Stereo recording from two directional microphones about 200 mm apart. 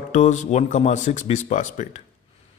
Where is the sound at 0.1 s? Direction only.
35° left (ahead or behind).